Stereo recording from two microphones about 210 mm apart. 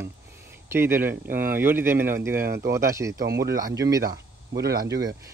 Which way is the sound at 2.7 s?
15° right (ahead or behind).